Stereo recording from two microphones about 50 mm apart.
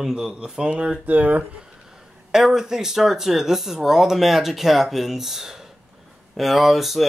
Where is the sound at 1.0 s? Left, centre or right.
Right.